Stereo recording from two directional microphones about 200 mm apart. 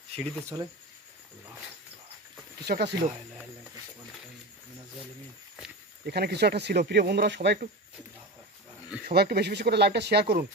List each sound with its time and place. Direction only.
2.6 s speech: 55° right (ahead or behind)
6.0 s speech: 50° right (ahead or behind)
9.0 s speech: 55° right (ahead or behind)